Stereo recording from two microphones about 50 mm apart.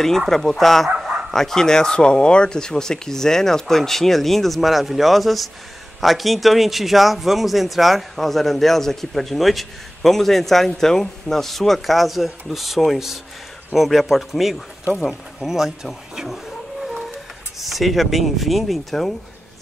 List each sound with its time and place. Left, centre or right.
0.5 s a man's voice: centre
0.8 s bow-wow: centre
1.3 s a man's voice: centre
16.8 s a sound: centre
17.6 s a man's voice: centre